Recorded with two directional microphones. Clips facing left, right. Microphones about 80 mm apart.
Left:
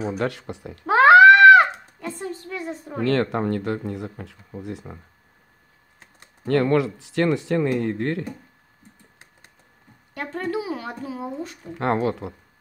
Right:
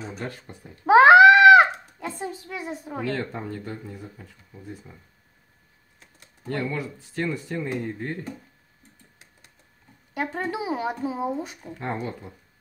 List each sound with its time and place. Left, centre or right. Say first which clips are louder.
0.2 s speech: left 9 dB; left
0.8 s a sound: left 1 dB; centre
3.1 s speech: left 10 dB; left
6.4 s speech: left 10 dB; left
10.1 s speech: left 1 dB; centre
11.8 s speech: left 9 dB; left